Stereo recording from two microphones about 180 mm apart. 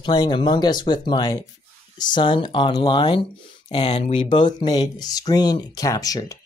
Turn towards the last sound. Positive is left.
turn(degrees=20)  # may be behind; listen again after turning